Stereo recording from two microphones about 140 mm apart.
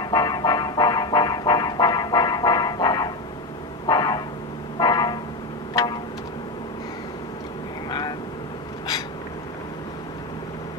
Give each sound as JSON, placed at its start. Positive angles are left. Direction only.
{"t": 0.0, "sound": "music", "side_deg": 30}
{"t": 3.8, "sound": "a sound", "side_deg": 30}
{"t": 4.7, "sound": "vehicle", "side_deg": 30}